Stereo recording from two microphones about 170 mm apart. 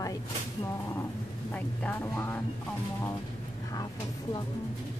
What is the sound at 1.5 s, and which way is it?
Speech, 10° left (ahead or behind).